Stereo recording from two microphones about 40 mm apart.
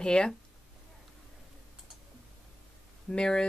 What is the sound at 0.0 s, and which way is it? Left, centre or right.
Speech, left.